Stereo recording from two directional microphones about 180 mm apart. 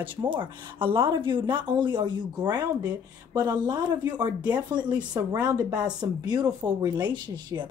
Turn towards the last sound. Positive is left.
turn(degrees=-25)  # may be behind; listen again after turning